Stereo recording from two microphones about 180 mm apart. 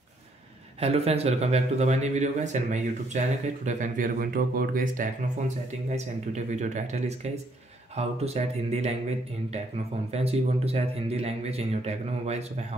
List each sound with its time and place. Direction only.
0.7 s a man's voice: 35° right (ahead or behind)
5.9 s a man's voice: 40° right (ahead or behind)
10.1 s a man's voice: 35° right (ahead or behind)